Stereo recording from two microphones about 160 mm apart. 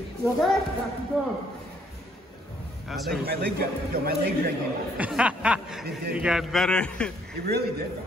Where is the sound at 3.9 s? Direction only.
75° right (ahead or behind).